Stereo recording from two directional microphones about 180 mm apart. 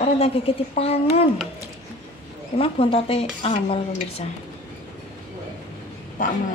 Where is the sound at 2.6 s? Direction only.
30° left (ahead or behind).